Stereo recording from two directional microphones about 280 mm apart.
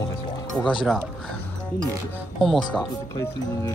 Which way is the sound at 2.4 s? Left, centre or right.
Centre.